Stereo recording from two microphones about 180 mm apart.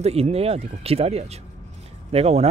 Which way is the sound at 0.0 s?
35° right (ahead or behind).